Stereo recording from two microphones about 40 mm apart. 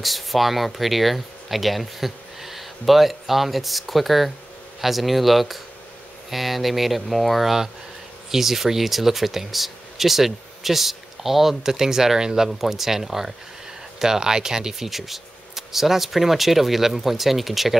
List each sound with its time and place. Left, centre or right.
0.0 s speech: centre
12.4 s speech: centre